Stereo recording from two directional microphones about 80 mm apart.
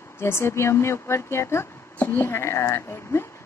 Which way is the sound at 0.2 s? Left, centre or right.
Left.